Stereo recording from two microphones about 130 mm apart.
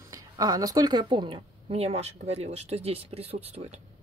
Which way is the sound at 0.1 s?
30° right (ahead or behind).